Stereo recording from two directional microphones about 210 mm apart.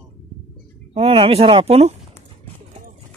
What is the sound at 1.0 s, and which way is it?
Speech, 25° right (ahead or behind).